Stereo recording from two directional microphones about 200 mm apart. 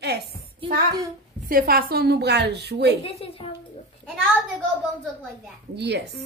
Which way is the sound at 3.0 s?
30° left (ahead or behind).